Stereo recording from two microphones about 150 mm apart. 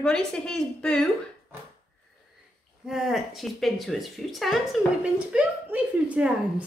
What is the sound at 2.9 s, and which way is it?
A woman's voice, centre (ahead or behind).